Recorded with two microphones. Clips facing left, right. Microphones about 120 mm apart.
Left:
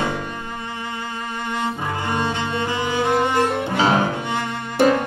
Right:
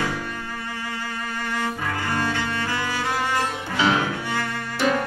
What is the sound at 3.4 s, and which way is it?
Music, 55° left (ahead or behind).